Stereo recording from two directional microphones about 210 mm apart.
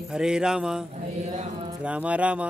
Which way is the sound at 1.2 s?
30° right (ahead or behind).